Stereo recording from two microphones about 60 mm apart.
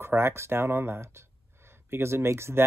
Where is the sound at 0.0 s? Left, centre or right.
Right.